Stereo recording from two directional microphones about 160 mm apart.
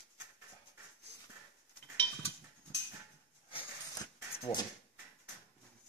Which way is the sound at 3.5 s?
35° left (ahead or behind).